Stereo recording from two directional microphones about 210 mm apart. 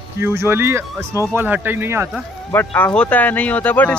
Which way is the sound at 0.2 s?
10° right (ahead or behind).